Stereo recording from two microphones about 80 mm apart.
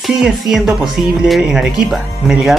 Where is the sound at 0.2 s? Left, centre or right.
Centre.